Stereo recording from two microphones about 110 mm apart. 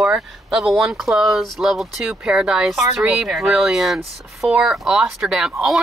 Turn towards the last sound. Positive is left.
turn(degrees=-5)  # may be behind; listen again after turning